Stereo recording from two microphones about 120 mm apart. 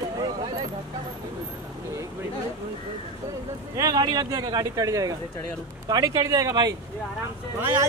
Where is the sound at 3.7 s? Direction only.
30° right (ahead or behind).